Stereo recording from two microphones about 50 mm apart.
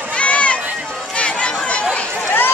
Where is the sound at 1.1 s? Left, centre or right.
Left.